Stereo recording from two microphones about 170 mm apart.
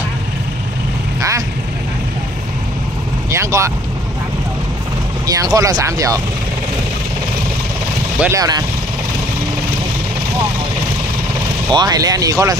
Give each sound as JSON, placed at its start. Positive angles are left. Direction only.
{"t": 3.3, "sound": "speech", "side_deg": -15}
{"t": 5.2, "sound": "speech", "side_deg": -20}
{"t": 8.2, "sound": "speech", "side_deg": -20}
{"t": 11.7, "sound": "speech", "side_deg": -25}